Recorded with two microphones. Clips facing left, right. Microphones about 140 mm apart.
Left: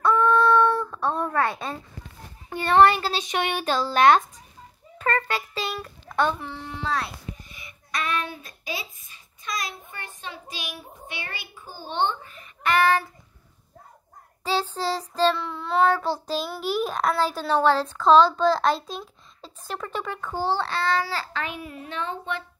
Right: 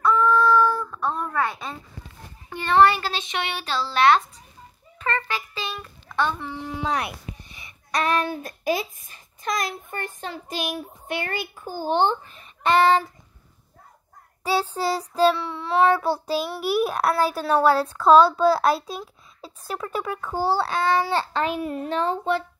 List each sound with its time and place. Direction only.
0.0 s child singing: 25° left (ahead or behind)
2.6 s a child's voice: 35° left (ahead or behind)
4.9 s a sound: 35° left (ahead or behind)
6.5 s child singing: 15° right (ahead or behind)
7.4 s a sound: 30° right (ahead or behind); by 8.8 s 50° right (ahead or behind)
9.0 s child singing: 50° right (ahead or behind); by 12.7 s 35° right (ahead or behind)
14.4 s child singing: 10° right (ahead or behind); by 22.4 s 35° right (ahead or behind)